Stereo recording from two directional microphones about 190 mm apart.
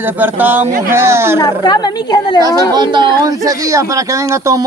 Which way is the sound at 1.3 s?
20° left (ahead or behind).